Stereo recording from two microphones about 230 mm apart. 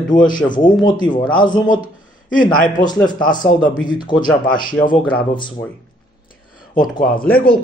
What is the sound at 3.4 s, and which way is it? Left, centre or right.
Speech, left.